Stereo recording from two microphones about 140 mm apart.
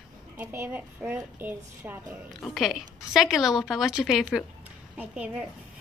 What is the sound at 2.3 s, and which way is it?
A woman's voice, centre (ahead or behind).